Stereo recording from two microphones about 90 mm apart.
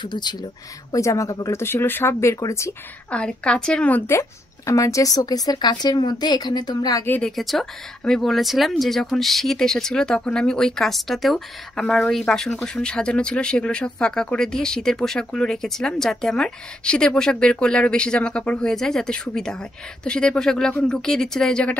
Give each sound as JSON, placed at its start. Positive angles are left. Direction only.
{"t": 0.0, "sound": "speech", "side_deg": 55}
{"t": 0.9, "sound": "a woman's voice", "side_deg": 35}
{"t": 1.6, "sound": "speech", "side_deg": 25}
{"t": 3.1, "sound": "speech", "side_deg": 10}
{"t": 4.1, "sound": "a woman's voice", "side_deg": 30}
{"t": 7.2, "sound": "speech", "side_deg": 0}